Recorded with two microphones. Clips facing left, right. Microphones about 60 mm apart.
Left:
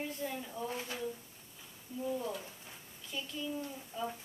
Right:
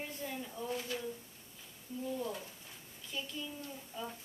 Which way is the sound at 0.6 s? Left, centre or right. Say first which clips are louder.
Right 3 dB; left.